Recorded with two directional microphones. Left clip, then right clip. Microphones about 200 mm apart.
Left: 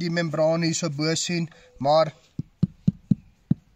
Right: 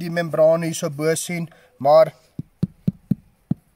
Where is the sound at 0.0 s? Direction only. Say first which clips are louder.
Right 6 dB; 10° right (ahead or behind).